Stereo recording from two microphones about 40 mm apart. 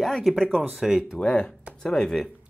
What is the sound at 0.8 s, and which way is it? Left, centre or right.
Speech, centre.